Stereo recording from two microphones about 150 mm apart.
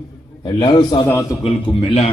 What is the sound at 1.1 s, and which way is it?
Speech, 20° left (ahead or behind).